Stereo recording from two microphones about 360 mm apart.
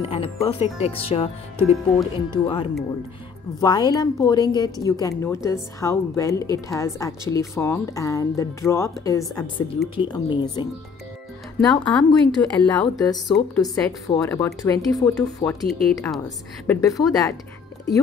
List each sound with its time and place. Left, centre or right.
0.0 s a woman's voice: centre